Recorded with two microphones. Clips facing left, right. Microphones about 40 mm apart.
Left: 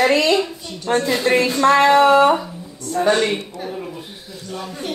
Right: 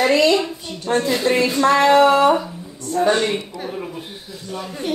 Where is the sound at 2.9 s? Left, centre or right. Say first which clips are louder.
Even; centre.